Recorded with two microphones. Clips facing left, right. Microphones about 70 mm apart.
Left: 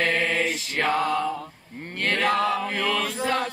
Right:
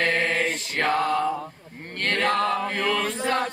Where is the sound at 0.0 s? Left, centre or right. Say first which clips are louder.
Even; centre.